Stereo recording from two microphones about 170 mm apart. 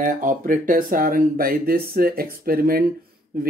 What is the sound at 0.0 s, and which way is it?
Speech, 50° right (ahead or behind).